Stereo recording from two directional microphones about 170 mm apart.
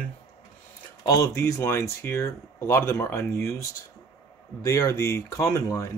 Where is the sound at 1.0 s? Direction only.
20° left (ahead or behind).